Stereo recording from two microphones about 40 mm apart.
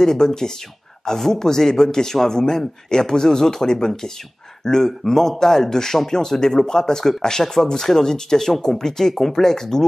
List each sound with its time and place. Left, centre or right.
0.0 s speech: centre